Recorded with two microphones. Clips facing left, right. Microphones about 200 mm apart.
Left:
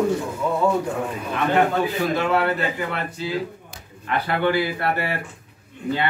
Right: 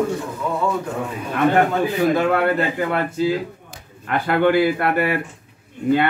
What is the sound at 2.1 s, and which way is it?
A man's voice, 50° right (ahead or behind).